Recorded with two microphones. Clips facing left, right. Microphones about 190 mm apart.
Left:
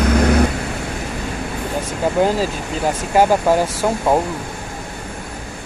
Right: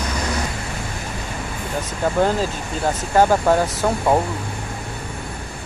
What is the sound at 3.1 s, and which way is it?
Speech, 10° left (ahead or behind).